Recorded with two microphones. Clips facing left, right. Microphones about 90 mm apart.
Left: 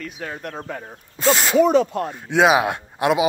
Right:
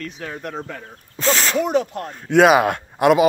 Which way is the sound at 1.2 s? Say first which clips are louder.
Left 1 dB; 5° left (ahead or behind).